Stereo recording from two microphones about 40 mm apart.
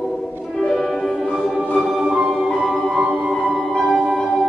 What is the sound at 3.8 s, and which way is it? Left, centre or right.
Music, centre.